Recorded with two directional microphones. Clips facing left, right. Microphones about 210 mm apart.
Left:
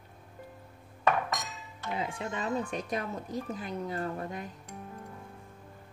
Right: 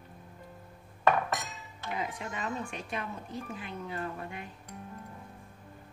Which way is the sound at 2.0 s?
30° left (ahead or behind).